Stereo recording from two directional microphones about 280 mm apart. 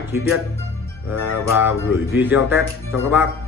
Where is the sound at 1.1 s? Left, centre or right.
Left.